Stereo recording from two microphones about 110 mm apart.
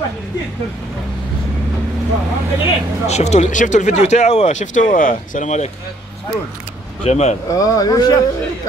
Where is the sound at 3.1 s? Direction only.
90° left.